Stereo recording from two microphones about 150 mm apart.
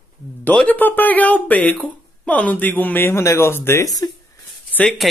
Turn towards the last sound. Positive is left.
turn(degrees=5)  # may be behind; listen again after turning